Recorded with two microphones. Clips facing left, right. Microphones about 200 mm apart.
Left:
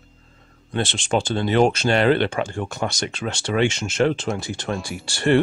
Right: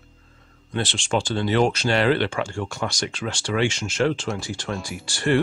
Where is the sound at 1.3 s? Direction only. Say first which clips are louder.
Left 2 dB; 50° left (ahead or behind).